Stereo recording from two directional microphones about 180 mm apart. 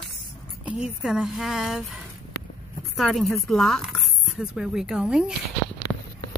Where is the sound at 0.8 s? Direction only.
5° right (ahead or behind).